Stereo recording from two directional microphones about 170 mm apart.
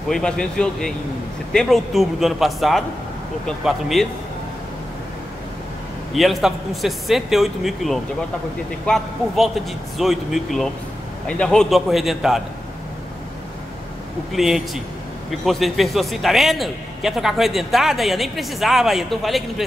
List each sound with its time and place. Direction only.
0.1 s a man's voice: 5° left (ahead or behind)
6.1 s a man's voice: centre (ahead or behind)
14.3 s a man's voice: centre (ahead or behind)